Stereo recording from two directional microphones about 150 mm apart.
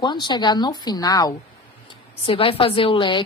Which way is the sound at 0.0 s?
30° left (ahead or behind).